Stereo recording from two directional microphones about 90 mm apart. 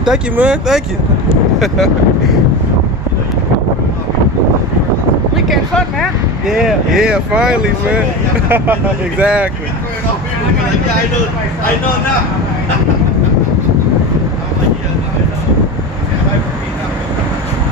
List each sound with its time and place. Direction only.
0.0 s speech: 10° right (ahead or behind)
6.4 s speech: 5° right (ahead or behind)
8.5 s speech: 20° right (ahead or behind)